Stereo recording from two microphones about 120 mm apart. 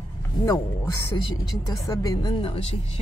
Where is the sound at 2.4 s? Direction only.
50° left (ahead or behind).